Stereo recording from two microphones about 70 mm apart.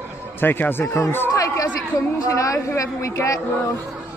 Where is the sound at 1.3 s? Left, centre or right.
Left.